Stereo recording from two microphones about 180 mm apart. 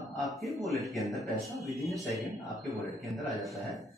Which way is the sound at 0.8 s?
Centre (ahead or behind).